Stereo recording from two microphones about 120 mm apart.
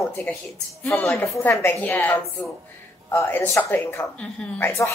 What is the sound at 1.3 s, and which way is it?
A woman's voice, 25° left (ahead or behind).